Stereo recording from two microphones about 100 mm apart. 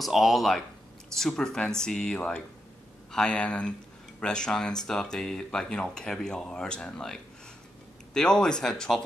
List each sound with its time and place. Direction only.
0.0 s speech: centre (ahead or behind)